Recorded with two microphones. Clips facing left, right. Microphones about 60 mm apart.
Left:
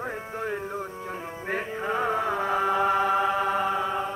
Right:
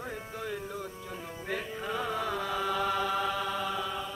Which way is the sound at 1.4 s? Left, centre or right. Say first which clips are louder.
Left 6 dB; left.